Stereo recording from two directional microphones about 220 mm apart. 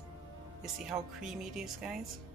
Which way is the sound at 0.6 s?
Centre (ahead or behind).